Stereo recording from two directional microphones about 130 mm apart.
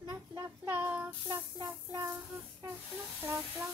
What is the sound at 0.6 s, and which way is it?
Child singing, 15° right (ahead or behind).